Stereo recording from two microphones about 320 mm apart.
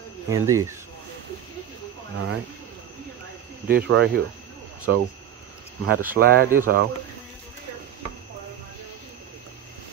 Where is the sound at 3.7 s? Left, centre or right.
Right.